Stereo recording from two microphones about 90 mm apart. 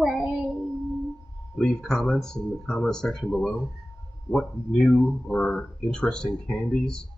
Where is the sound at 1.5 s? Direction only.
5° left (ahead or behind).